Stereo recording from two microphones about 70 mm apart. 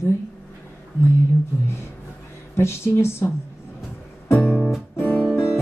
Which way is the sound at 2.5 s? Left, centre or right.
Left.